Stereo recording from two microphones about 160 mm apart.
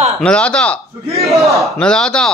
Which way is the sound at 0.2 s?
5° left (ahead or behind).